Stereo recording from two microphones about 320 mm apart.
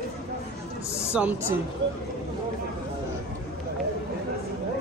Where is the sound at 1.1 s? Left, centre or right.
Centre.